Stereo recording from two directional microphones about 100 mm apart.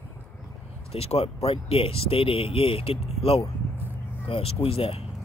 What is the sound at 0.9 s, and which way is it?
Speech, 85° left.